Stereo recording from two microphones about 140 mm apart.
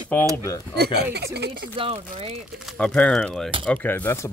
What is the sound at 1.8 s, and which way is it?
Speech, 45° right (ahead or behind).